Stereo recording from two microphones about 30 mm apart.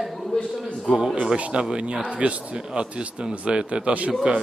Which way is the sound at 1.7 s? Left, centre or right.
Right.